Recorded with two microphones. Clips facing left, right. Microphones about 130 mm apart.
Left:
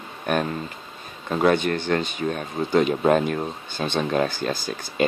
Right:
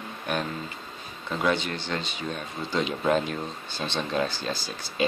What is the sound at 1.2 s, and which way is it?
Speech, 50° left (ahead or behind).